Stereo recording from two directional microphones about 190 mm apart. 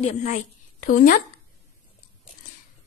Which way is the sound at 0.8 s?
45° left (ahead or behind).